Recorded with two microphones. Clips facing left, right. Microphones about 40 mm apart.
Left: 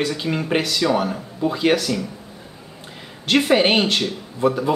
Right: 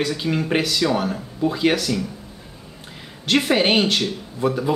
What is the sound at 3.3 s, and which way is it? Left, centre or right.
Speech, centre.